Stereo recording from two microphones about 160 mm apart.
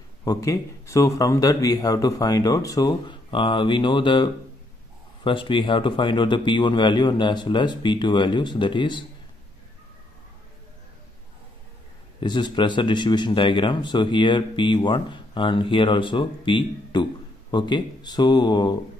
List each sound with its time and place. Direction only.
0.2 s a man's voice: 20° left (ahead or behind)
12.2 s a man's voice: 30° left (ahead or behind)